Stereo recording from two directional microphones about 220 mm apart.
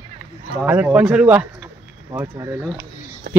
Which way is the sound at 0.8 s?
5° right (ahead or behind).